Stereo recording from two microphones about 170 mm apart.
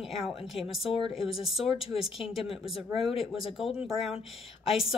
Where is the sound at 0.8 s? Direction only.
35° left (ahead or behind).